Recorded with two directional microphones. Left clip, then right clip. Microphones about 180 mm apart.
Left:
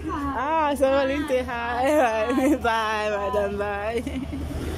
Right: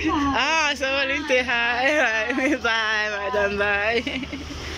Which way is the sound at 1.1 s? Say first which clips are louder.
Right 4 dB; 15° left (ahead or behind).